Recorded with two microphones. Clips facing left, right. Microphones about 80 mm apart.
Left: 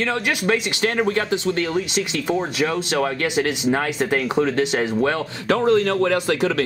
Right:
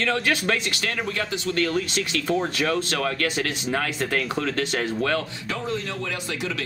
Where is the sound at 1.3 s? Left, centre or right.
Left.